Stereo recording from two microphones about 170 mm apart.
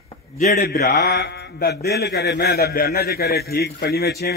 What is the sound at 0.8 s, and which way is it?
Speech, 75° left (ahead or behind).